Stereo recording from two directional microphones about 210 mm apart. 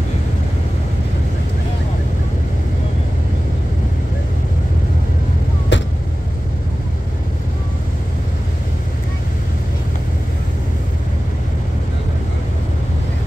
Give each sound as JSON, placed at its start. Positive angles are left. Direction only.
{"t": 5.7, "sound": "vehicle", "side_deg": 60}